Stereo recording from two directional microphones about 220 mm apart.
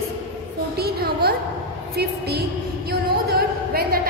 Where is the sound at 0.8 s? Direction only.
45° right (ahead or behind).